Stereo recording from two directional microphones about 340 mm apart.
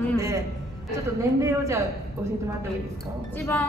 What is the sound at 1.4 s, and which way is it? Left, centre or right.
Speech, centre.